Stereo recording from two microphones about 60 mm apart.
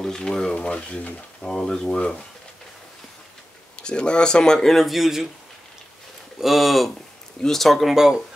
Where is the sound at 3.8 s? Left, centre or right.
Centre.